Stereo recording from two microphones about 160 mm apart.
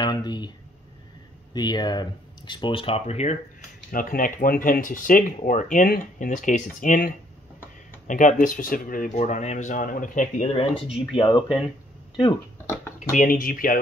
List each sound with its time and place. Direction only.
0.0 s speech: 25° left (ahead or behind)
1.5 s speech: 25° left (ahead or behind); by 3.3 s 40° left (ahead or behind)
3.9 s speech: 60° left (ahead or behind)
10.6 s speech: 30° left (ahead or behind)
13.1 s speech: 60° left (ahead or behind)